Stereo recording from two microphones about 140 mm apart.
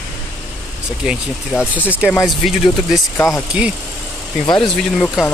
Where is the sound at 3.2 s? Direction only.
25° left (ahead or behind).